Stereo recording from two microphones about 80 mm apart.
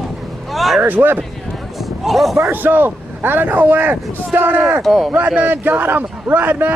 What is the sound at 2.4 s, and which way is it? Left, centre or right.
A man's voice, right.